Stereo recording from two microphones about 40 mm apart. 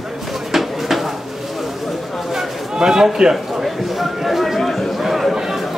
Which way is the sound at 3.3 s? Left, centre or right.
Centre.